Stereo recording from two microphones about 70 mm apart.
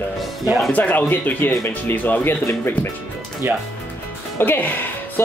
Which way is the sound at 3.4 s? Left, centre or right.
Right.